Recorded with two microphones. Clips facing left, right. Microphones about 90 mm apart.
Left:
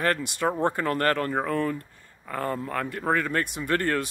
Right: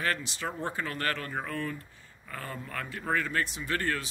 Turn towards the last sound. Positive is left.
turn(degrees=55)  # may be behind; listen again after turning